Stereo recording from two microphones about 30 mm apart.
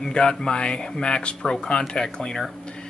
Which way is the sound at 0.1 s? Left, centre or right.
Left.